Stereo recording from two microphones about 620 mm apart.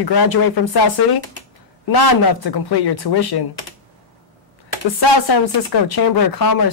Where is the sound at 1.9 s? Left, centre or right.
Left.